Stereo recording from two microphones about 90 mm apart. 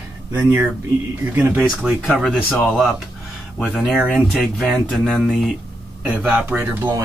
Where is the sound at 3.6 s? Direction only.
5° right (ahead or behind).